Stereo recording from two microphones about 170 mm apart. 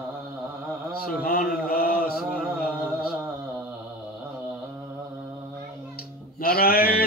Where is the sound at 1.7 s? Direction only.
60° left (ahead or behind).